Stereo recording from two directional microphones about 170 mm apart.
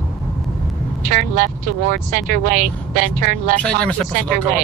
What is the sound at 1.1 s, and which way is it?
Speech, 55° right (ahead or behind).